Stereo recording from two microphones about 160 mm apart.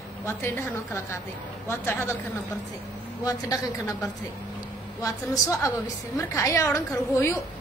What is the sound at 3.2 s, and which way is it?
Speech, 20° left (ahead or behind).